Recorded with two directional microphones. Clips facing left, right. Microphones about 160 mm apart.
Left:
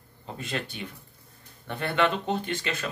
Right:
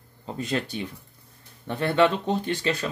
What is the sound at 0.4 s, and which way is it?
Speech, 40° right (ahead or behind).